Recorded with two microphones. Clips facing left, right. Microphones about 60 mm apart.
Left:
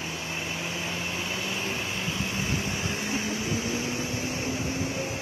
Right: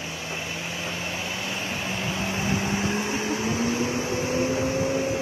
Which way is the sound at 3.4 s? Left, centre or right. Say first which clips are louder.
Right 5 dB; right.